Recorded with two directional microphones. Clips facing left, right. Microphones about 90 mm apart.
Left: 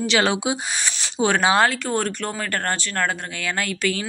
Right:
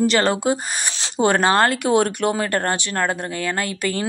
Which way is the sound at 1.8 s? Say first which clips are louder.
Right 7 dB; 15° right (ahead or behind).